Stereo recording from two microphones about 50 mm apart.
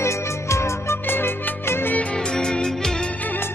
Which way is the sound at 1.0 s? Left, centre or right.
Left.